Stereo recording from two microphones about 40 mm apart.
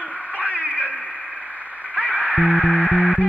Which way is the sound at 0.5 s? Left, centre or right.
Left.